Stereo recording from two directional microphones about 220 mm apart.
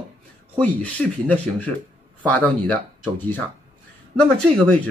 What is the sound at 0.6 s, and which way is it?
Speech, 5° left (ahead or behind).